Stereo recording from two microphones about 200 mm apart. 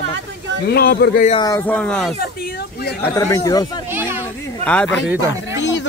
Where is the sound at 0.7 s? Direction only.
50° left (ahead or behind).